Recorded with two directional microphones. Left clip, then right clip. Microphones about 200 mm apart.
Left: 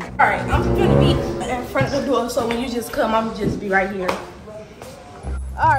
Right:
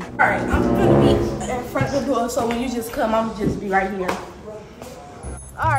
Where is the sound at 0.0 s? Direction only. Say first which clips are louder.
Left 1 dB; centre (ahead or behind).